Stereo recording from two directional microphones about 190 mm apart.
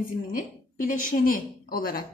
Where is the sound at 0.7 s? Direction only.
45° left (ahead or behind).